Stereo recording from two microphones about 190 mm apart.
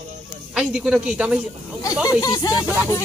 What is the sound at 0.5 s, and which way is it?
Snake, 5° right (ahead or behind).